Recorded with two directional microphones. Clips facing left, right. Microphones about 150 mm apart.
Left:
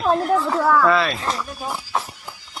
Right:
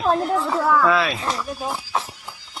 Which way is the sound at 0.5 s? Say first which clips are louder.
Even; centre (ahead or behind).